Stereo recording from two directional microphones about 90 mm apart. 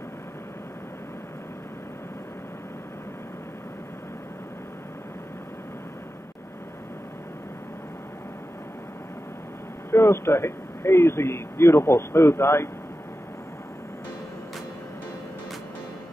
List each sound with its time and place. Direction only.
9.8 s a man's voice: 30° left (ahead or behind)